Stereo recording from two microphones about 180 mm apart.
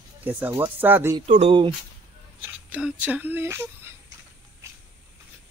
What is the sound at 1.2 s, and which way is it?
Speech, 40° right (ahead or behind).